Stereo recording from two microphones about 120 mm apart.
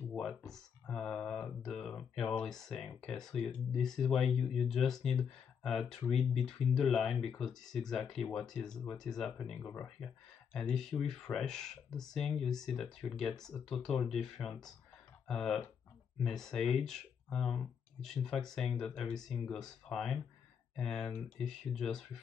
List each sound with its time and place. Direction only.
0.1 s speech: 5° left (ahead or behind)
9.6 s speech: 15° left (ahead or behind)
9.8 s speech: centre (ahead or behind)